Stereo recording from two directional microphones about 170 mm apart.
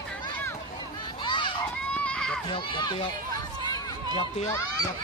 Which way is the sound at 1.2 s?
25° left (ahead or behind).